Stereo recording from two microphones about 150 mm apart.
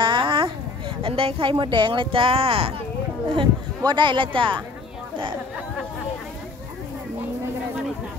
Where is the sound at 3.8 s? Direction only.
30° right (ahead or behind).